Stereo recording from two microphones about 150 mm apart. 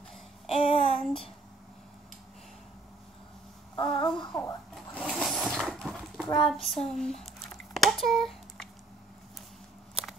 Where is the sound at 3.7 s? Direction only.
35° left (ahead or behind).